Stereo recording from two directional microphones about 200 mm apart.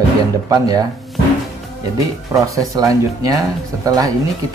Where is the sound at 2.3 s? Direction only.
15° right (ahead or behind).